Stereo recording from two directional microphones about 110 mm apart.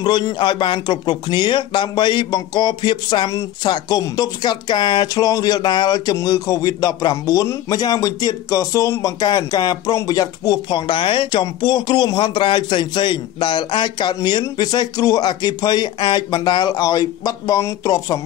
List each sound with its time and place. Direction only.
0.0 s a man's voice: 40° left (ahead or behind)
10.7 s a man's voice: 50° left (ahead or behind); by 18.2 s 35° left (ahead or behind)